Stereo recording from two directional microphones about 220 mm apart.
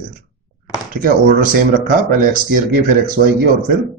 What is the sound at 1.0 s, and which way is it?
A man's voice, 40° right (ahead or behind).